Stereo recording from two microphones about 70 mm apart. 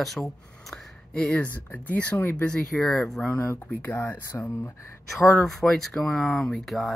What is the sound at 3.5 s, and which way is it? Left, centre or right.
Speech, left.